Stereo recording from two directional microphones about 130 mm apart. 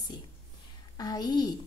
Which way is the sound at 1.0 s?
30° left (ahead or behind).